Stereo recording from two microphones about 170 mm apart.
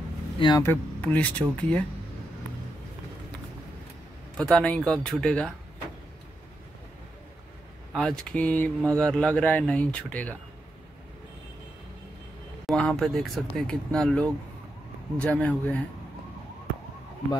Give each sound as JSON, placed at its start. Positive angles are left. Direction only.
{"t": 0.4, "sound": "speech", "side_deg": 25}
{"t": 0.7, "sound": "speech", "side_deg": 10}
{"t": 4.4, "sound": "speech", "side_deg": 5}
{"t": 7.9, "sound": "speech", "side_deg": 0}
{"t": 12.6, "sound": "speech", "side_deg": 5}